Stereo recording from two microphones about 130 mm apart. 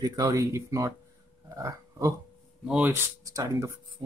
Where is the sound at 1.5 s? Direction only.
25° right (ahead or behind).